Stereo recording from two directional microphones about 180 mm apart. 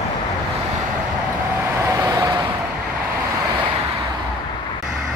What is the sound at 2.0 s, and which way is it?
Vehicle, 15° right (ahead or behind).